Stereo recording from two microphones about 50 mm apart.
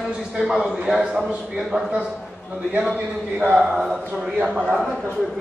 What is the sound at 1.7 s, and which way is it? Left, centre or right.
Speech, right.